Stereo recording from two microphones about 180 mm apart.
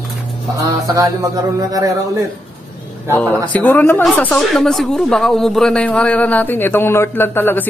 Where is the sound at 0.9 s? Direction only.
20° right (ahead or behind).